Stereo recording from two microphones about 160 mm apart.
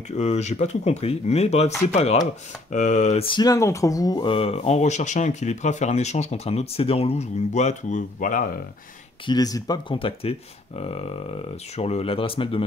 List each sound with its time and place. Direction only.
0.1 s speech: 40° left (ahead or behind)
3.3 s speech: 25° left (ahead or behind); by 8.5 s 55° left (ahead or behind)
9.2 s speech: 25° left (ahead or behind)